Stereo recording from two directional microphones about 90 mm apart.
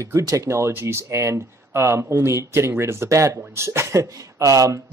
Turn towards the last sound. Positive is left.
turn(degrees=-35)  # may be behind; listen again after turning